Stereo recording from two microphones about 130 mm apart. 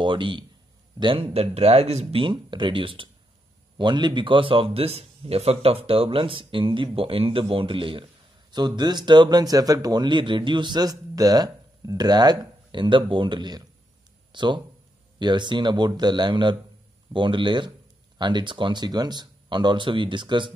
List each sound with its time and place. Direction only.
0.0 s speech: 40° right (ahead or behind); by 2.2 s 55° right (ahead or behind)
2.2 s speech: 40° right (ahead or behind)